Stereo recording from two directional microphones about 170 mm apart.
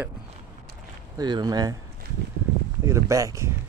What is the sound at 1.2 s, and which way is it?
Speech, 25° right (ahead or behind).